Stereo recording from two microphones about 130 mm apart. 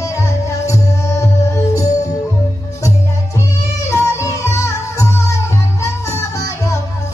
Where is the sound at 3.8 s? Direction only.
25° left (ahead or behind).